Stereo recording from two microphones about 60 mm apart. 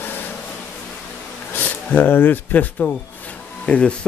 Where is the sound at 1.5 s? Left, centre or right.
Left.